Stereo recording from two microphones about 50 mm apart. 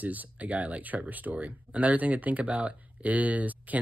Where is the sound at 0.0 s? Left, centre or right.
Right.